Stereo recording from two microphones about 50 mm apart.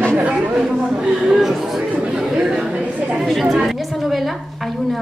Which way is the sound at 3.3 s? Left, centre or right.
Centre.